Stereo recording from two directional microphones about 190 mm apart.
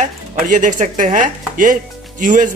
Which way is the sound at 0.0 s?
40° right (ahead or behind).